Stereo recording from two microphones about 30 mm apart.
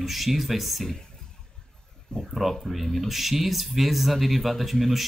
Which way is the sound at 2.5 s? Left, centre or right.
Centre.